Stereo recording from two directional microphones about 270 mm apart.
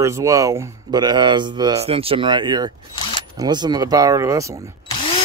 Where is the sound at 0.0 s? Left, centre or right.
Centre.